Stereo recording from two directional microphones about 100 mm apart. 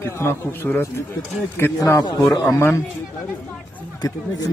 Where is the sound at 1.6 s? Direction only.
30° left (ahead or behind).